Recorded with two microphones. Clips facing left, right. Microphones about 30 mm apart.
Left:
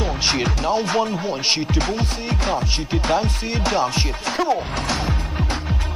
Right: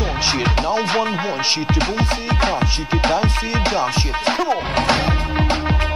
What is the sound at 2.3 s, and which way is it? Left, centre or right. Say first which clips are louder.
Music: right 7 dB; right.